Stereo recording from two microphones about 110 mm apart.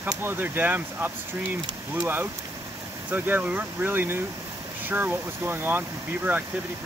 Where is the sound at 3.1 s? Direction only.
15° right (ahead or behind).